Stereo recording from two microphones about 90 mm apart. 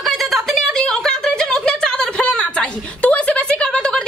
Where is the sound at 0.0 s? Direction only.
Centre (ahead or behind).